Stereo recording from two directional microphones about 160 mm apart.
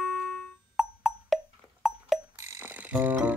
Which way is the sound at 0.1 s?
Centre (ahead or behind).